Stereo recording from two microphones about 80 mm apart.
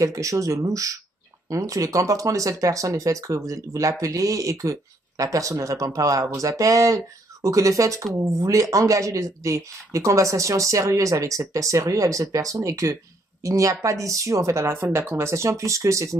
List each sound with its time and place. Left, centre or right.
0.0 s speech: right